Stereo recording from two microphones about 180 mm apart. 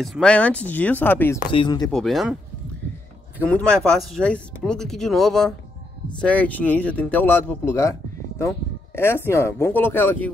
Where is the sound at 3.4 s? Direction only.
5° left (ahead or behind).